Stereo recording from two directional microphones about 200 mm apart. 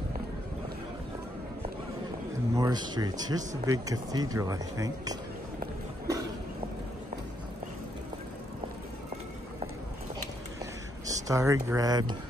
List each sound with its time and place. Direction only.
2.5 s speech: 20° right (ahead or behind)
11.1 s speech: 15° right (ahead or behind)